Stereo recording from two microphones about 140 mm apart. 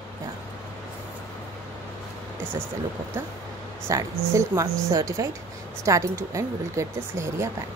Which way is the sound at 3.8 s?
20° right (ahead or behind).